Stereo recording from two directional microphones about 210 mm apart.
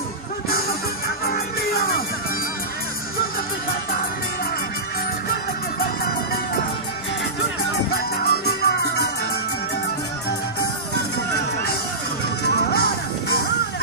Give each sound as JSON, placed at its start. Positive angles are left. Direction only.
{"t": 1.2, "sound": "music", "side_deg": 45}
{"t": 7.9, "sound": "music", "side_deg": 45}
{"t": 12.4, "sound": "music", "side_deg": 50}